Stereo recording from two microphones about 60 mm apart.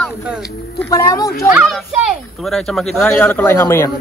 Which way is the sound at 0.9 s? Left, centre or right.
Left.